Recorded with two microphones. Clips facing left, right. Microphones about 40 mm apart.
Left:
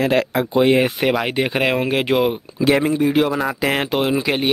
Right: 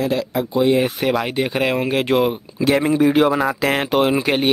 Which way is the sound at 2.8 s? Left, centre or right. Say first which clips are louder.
Right 2 dB; right.